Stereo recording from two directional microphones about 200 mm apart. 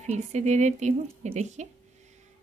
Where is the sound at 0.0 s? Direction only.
35° right (ahead or behind).